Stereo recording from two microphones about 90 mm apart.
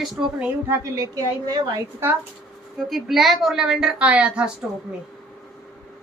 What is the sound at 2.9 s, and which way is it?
A woman's voice, centre (ahead or behind).